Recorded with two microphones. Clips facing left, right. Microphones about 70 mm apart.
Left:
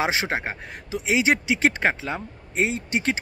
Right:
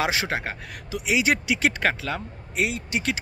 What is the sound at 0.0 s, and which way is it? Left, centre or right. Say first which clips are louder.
Speech: left 1 dB; left.